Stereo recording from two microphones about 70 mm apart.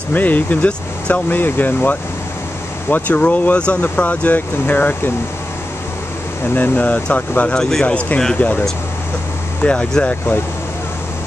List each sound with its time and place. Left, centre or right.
0.1 s speech: left
6.5 s speech: left